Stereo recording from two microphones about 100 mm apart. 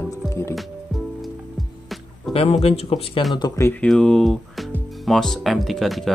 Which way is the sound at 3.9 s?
5° left (ahead or behind).